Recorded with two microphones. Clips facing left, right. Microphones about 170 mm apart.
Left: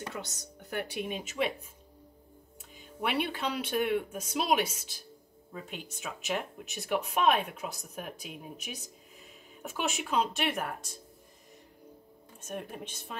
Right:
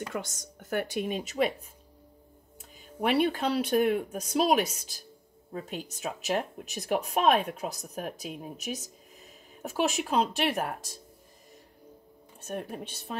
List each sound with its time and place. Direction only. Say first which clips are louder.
0.1 s a woman's voice: right 5 dB; 45° right (ahead or behind)
3.0 s speech: right 6 dB; 40° right (ahead or behind)
12.4 s speech: right 3 dB; 35° right (ahead or behind)